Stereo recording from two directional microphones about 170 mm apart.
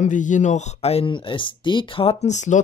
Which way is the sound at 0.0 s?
45° left (ahead or behind).